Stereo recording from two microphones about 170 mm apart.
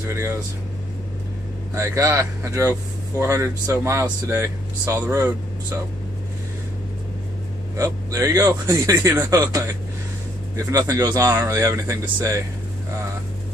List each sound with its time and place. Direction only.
1.8 s speech: 15° right (ahead or behind)
7.7 s speech: 20° right (ahead or behind)